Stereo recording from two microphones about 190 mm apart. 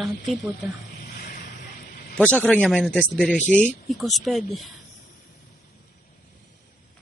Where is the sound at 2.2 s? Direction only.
5° left (ahead or behind).